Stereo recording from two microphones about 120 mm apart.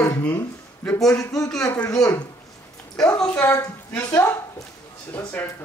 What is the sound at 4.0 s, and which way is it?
Speech, 25° left (ahead or behind).